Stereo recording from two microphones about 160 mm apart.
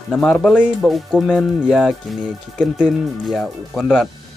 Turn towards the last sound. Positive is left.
turn(degrees=0)  # may be behind; listen again after turning